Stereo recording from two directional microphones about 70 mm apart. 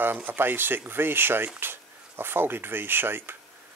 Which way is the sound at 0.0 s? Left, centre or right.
Right.